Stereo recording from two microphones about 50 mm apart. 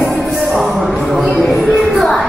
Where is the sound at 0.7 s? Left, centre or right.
Right.